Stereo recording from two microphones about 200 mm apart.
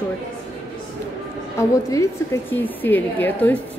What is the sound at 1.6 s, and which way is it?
A woman's voice, 15° left (ahead or behind).